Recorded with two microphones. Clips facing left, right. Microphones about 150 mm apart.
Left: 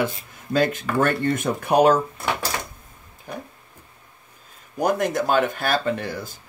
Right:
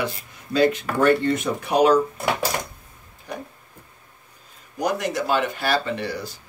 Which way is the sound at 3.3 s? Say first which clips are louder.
Right 1 dB; 50° left (ahead or behind).